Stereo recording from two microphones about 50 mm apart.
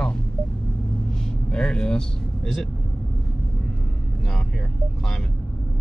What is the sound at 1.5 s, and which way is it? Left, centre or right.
Speech, centre.